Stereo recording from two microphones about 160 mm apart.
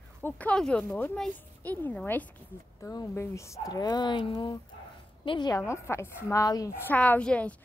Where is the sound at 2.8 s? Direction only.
20° left (ahead or behind).